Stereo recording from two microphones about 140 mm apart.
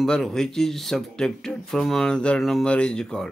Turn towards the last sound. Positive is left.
turn(degrees=5)  # may be behind; listen again after turning